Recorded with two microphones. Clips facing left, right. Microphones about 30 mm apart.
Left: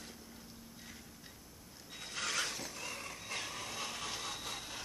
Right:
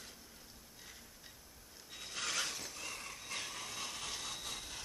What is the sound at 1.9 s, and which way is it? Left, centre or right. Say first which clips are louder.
Mechanisms: left 2 dB; centre.